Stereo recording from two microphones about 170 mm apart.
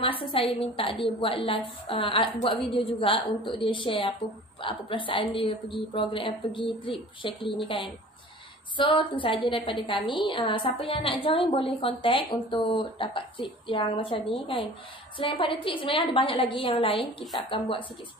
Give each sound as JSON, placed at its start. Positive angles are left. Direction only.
{"t": 0.0, "sound": "a woman's voice", "side_deg": 30}
{"t": 8.7, "sound": "a woman's voice", "side_deg": 30}